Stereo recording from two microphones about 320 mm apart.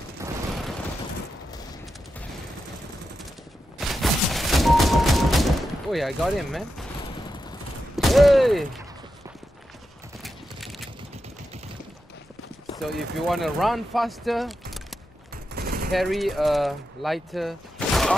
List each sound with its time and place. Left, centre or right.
0.2 s vehicle: centre
3.7 s fusillade: centre
7.9 s mechanisms: centre
10.2 s clip-clop: centre
12.8 s speech: centre
15.5 s gunshot: right
15.9 s speech: centre